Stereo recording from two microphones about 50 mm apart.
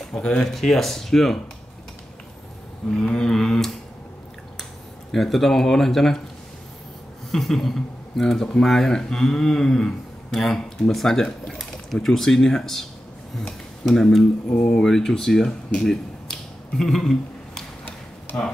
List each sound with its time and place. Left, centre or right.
0.1 s speech: centre
0.5 s speech: centre
2.9 s a sound: centre
5.1 s speech: centre
7.2 s speech: centre
15.8 s finger snapping: centre